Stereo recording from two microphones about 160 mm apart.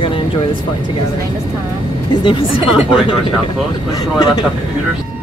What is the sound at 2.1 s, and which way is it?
Speech, 30° left (ahead or behind).